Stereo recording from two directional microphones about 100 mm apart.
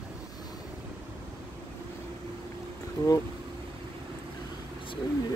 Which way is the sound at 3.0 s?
30° left (ahead or behind).